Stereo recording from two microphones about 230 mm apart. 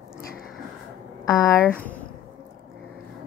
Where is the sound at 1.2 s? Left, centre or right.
Centre.